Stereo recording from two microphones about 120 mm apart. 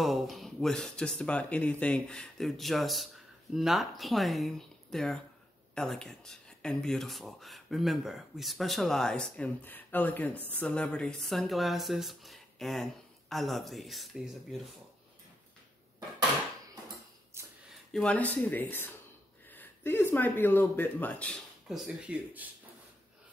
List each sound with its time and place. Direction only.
0.0 s speech: centre (ahead or behind)
17.4 s a sound: 20° right (ahead or behind)
17.9 s speech: 10° left (ahead or behind)
21.6 s speech: 5° right (ahead or behind)